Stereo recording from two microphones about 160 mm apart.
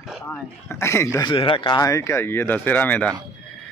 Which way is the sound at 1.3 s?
30° left (ahead or behind).